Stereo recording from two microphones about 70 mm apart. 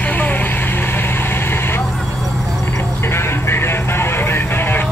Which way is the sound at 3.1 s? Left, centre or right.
Left.